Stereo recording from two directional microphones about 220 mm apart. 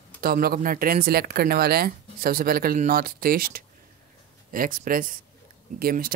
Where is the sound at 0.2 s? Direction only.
45° right (ahead or behind).